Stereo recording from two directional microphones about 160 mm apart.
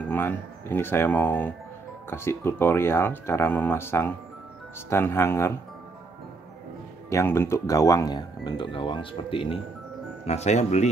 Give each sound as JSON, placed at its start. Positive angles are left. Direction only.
{"t": 0.1, "sound": "speech", "side_deg": 10}
{"t": 7.1, "sound": "speech", "side_deg": 15}
{"t": 10.2, "sound": "speech", "side_deg": 45}